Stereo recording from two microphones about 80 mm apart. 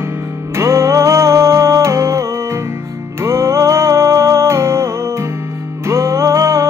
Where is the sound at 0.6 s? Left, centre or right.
Right.